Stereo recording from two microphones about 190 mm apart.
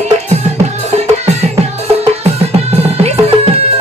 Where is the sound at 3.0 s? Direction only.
35° right (ahead or behind).